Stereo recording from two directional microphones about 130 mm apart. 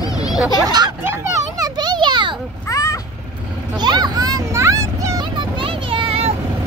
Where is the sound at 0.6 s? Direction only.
35° right (ahead or behind).